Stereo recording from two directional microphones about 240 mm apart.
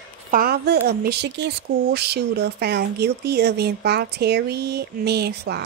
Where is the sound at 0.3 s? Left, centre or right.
Right.